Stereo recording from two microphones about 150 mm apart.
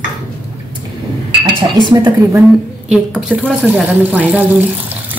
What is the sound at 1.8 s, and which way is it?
Speech, 30° right (ahead or behind).